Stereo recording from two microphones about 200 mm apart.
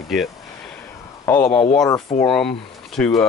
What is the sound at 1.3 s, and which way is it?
Speech, 10° left (ahead or behind).